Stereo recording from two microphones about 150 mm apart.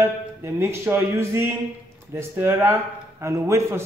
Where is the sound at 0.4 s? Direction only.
20° right (ahead or behind).